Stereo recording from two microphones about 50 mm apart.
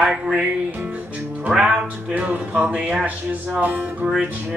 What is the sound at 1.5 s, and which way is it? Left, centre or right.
Speech, centre.